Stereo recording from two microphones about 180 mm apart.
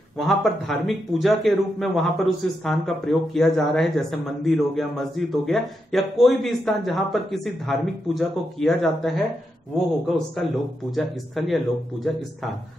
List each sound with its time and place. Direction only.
0.2 s a man's voice: centre (ahead or behind)